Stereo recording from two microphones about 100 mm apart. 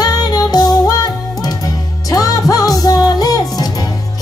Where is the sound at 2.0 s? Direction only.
35° left (ahead or behind).